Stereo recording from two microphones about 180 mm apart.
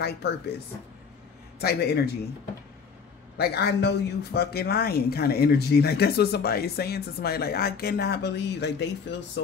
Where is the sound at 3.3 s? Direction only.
65° left (ahead or behind).